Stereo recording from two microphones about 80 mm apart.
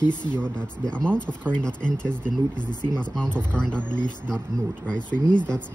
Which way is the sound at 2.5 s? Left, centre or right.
Left.